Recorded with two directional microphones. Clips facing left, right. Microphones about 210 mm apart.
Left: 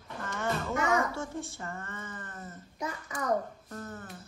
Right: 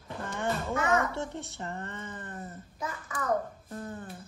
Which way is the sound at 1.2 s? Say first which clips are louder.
Right 1 dB; 20° right (ahead or behind).